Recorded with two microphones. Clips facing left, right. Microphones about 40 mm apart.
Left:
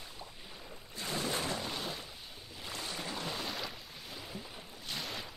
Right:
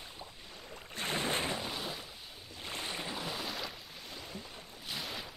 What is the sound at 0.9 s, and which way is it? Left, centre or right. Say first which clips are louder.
Boat: right 2 dB; right.